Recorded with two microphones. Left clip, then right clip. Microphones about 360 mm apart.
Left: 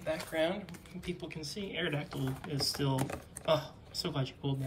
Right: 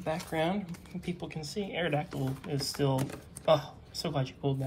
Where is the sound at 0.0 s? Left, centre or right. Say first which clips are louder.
Right 1 dB; centre.